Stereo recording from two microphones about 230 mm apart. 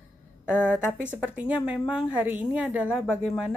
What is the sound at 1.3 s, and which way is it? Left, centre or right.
Speech, centre.